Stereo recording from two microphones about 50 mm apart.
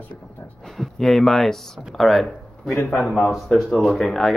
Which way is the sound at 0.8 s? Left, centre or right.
Centre.